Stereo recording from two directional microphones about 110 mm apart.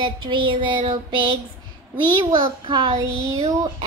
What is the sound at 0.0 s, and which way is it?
Child singing, 50° right (ahead or behind).